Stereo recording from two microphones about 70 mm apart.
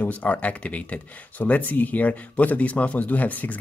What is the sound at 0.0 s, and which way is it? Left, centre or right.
Speech, left.